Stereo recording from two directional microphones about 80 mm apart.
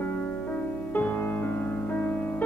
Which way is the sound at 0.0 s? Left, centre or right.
Left.